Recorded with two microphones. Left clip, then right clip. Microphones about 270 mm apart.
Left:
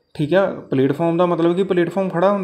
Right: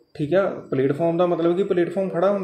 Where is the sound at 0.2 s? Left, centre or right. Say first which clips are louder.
Left 3 dB; left.